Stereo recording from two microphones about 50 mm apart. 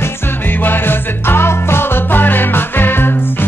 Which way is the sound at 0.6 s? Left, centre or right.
Left.